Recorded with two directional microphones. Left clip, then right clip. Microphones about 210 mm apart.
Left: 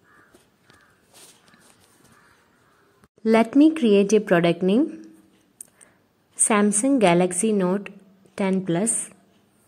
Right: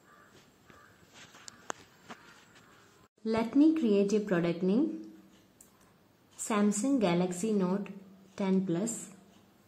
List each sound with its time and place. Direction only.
3.3 s speech: 35° left (ahead or behind)
6.4 s speech: 35° left (ahead or behind)